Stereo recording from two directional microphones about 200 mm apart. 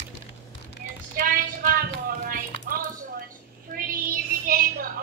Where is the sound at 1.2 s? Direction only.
45° right (ahead or behind).